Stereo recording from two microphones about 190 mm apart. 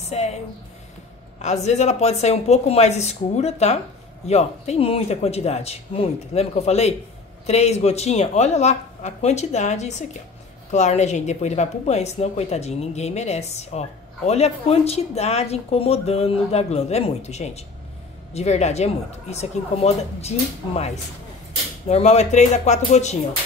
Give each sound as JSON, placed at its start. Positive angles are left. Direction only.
{"t": 0.0, "sound": "speech", "side_deg": 35}
{"t": 1.4, "sound": "speech", "side_deg": 35}